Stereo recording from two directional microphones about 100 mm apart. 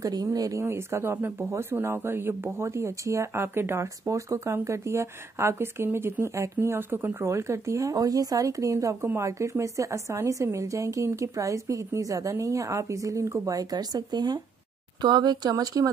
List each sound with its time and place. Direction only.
0.0 s speech: 40° right (ahead or behind)